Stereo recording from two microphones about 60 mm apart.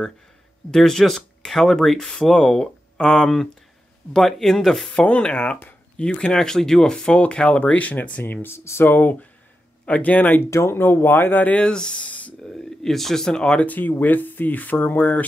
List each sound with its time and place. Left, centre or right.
0.7 s speech: centre
5.0 s speech: left
8.2 s speech: left
8.5 s speech: left
10.5 s speech: left
12.4 s speech: centre
13.7 s speech: left